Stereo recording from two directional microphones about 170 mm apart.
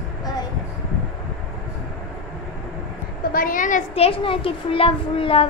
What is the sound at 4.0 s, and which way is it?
A child's voice, 35° left (ahead or behind).